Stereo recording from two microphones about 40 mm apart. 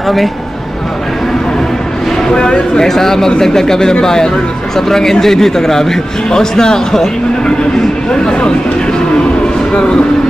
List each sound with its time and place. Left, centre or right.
2.2 s speech: left
2.9 s speech: centre